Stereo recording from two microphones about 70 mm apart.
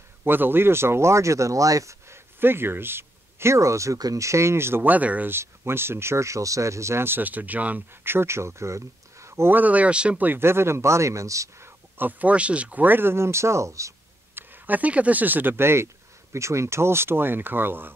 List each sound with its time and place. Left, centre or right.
0.2 s speech: right
2.4 s speech: right
4.9 s speech: right
5.3 s speech: right
9.6 s speech: right
12.0 s speech: right
14.3 s speech: right